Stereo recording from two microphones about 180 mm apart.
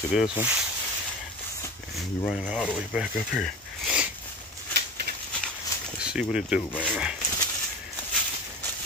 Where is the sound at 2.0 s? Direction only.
5° right (ahead or behind).